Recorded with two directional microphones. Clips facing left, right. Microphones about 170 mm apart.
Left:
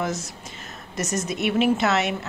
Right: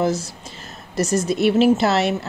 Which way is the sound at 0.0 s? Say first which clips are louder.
Right 7 dB; 30° right (ahead or behind).